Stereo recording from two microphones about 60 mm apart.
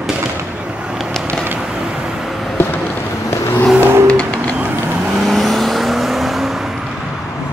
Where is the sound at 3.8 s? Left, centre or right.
Right.